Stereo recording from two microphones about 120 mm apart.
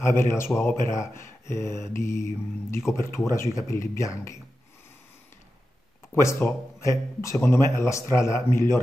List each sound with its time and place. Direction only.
0.0 s speech: 20° left (ahead or behind)
6.1 s speech: 25° left (ahead or behind)